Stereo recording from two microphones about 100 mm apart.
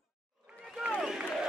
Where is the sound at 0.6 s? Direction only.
5° right (ahead or behind).